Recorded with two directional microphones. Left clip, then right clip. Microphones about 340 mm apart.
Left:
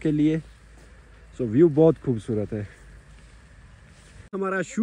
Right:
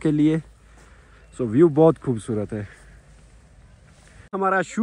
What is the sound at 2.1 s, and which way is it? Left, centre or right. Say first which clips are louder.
Speech: right 1 dB; right.